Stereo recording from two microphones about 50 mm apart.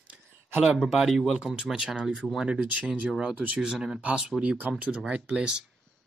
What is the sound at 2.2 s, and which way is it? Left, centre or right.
Speech, centre.